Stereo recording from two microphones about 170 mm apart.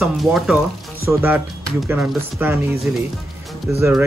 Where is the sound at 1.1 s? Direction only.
15° right (ahead or behind).